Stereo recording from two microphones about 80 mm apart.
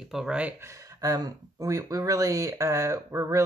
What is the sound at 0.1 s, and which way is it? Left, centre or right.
Speech, centre.